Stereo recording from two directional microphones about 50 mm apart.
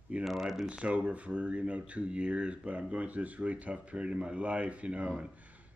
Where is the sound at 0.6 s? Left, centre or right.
Right.